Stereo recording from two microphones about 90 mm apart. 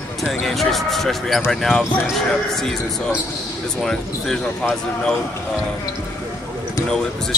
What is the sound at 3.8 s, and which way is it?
Speech, 5° left (ahead or behind).